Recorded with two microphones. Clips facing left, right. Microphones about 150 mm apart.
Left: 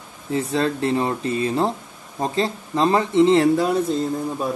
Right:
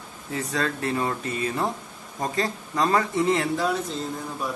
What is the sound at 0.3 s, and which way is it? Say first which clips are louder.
Speech: left 6 dB; 25° left (ahead or behind).